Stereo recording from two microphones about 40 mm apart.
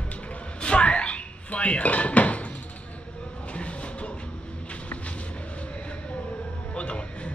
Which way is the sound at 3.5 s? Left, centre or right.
Left.